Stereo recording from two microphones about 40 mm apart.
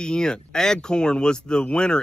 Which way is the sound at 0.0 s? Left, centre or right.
Centre.